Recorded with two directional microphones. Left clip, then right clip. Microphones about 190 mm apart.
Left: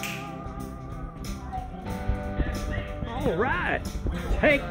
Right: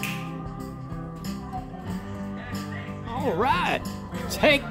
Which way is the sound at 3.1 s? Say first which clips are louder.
Right 3 dB; 20° right (ahead or behind).